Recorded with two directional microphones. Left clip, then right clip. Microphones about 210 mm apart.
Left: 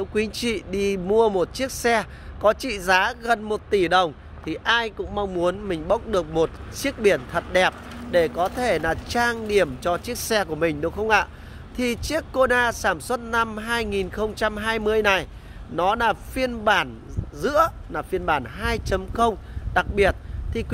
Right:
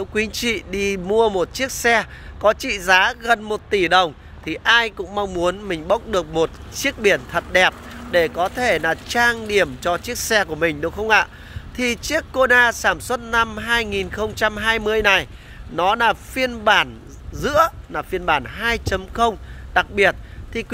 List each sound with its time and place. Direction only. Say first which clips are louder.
0.0 s speech: right 3 dB; centre (ahead or behind)